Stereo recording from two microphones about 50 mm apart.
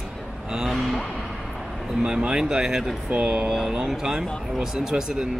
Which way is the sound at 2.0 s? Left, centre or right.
Centre.